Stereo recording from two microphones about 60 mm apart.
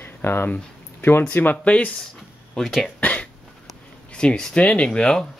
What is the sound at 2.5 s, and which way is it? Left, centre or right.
Speech, centre.